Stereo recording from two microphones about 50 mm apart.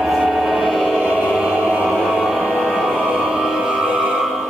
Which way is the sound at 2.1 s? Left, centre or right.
Centre.